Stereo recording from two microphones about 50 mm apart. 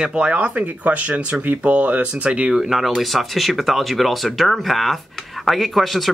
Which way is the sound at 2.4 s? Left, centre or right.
Centre.